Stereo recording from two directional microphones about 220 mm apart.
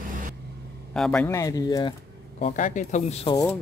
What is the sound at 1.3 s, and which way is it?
Speech, 15° left (ahead or behind).